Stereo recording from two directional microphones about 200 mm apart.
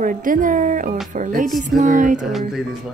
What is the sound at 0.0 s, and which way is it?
Speech, 40° right (ahead or behind).